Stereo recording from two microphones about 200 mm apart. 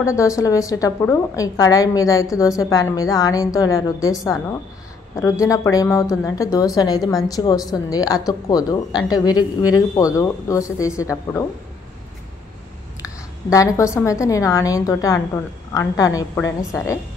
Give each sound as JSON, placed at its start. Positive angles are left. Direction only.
{"t": 0.0, "sound": "speech", "side_deg": 15}
{"t": 5.2, "sound": "speech", "side_deg": 15}
{"t": 13.0, "sound": "speech", "side_deg": 15}